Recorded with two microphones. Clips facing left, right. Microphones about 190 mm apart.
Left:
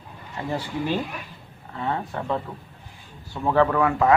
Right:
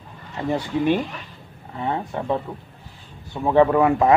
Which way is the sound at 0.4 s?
15° right (ahead or behind).